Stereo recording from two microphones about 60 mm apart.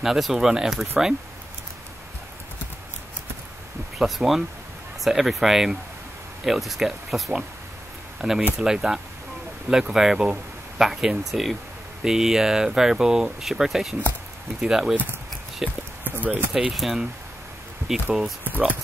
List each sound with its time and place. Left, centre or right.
0.0 s speech: centre
4.0 s speech: centre
16.0 s speech: right
16.7 s speech: centre